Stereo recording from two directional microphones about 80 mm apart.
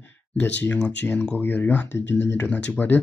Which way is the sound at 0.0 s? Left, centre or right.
Left.